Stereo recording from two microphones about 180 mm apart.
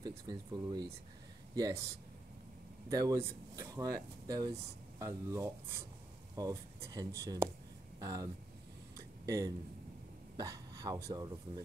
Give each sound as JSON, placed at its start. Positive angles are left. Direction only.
{"t": 0.0, "sound": "speech", "side_deg": -25}
{"t": 2.9, "sound": "speech", "side_deg": -20}
{"t": 8.9, "sound": "a sound", "side_deg": -20}
{"t": 11.1, "sound": "speech", "side_deg": -20}